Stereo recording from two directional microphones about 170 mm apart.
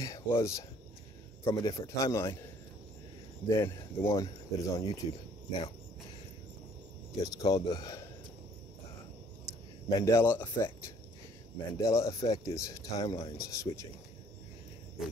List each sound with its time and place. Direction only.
0.0 s speech: 20° left (ahead or behind)
3.4 s speech: 15° left (ahead or behind)
7.2 s speech: 25° left (ahead or behind)
9.8 s speech: 20° left (ahead or behind)